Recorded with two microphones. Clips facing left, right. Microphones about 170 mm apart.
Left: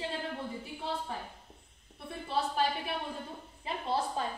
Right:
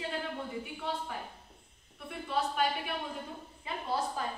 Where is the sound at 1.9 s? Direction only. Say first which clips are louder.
Even; 30° left (ahead or behind).